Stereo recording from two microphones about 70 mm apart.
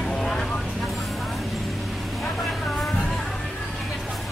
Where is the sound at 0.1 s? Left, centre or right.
Centre.